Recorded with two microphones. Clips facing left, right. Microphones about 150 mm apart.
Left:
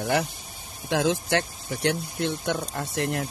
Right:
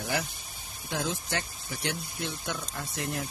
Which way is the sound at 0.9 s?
85° left.